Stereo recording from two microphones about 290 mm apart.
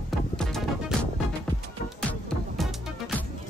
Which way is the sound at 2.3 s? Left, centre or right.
Centre.